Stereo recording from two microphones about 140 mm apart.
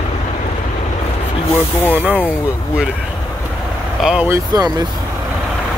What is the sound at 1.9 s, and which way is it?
Speech, 10° right (ahead or behind).